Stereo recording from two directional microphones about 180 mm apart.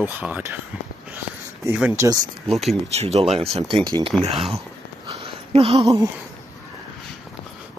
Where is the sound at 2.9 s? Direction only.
35° right (ahead or behind).